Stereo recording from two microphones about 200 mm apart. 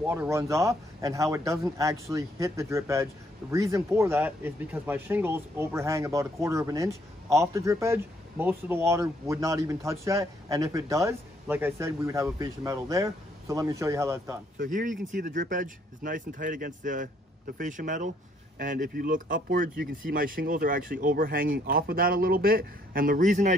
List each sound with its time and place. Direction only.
0.0 s speech: 5° right (ahead or behind)
14.6 s speech: 40° right (ahead or behind)